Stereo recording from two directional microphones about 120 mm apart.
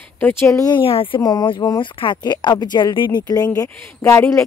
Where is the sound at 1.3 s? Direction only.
35° left (ahead or behind).